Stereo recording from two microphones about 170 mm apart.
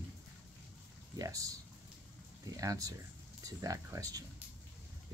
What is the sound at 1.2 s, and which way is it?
Speech, 20° right (ahead or behind).